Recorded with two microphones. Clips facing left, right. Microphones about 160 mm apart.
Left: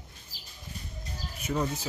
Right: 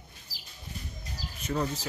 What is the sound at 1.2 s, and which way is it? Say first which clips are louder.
Bird: even; 90° right.